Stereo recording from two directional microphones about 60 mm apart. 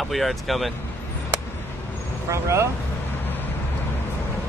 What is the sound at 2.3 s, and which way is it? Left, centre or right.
Speech, right.